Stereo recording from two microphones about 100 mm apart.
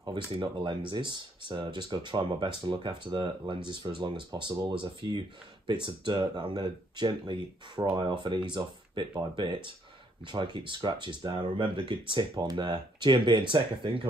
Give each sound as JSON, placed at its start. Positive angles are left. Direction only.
{"t": 0.3, "sound": "speech", "side_deg": -60}
{"t": 12.4, "sound": "speech", "side_deg": -40}
{"t": 12.6, "sound": "speech", "side_deg": -55}